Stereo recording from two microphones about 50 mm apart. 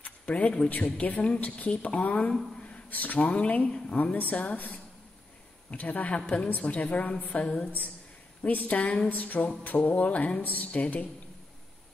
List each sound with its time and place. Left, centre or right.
0.0 s a woman's voice: left